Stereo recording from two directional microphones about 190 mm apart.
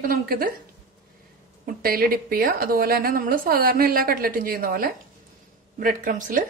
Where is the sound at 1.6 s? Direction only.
50° right (ahead or behind).